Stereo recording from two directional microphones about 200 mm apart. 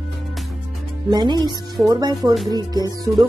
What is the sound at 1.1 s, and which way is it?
Speech, 20° right (ahead or behind).